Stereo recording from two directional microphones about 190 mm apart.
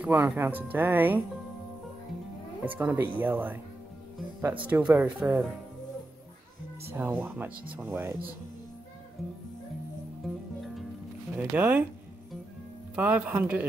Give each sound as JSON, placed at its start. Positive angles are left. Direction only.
{"t": 0.0, "sound": "speech", "side_deg": -10}
{"t": 2.6, "sound": "speech", "side_deg": -10}
{"t": 6.9, "sound": "speech", "side_deg": -10}
{"t": 10.2, "sound": "music", "side_deg": 0}
{"t": 11.3, "sound": "speech", "side_deg": -10}
{"t": 12.9, "sound": "speech", "side_deg": -5}